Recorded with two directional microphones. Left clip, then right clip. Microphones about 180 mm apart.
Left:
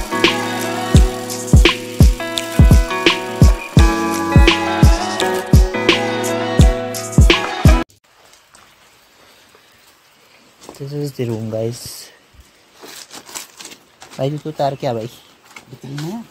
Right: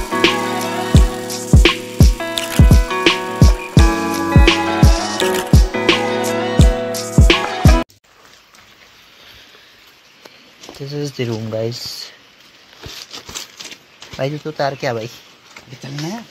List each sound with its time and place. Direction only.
0.0 s music: centre (ahead or behind)
6.0 s music: 15° left (ahead or behind)
6.6 s music: centre (ahead or behind)
10.9 s speech: 15° right (ahead or behind)
11.2 s speech: centre (ahead or behind)
13.1 s a sound: 20° left (ahead or behind)
14.1 s speech: 15° left (ahead or behind)